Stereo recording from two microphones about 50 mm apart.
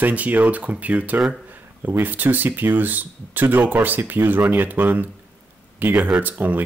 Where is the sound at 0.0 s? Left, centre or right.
Right.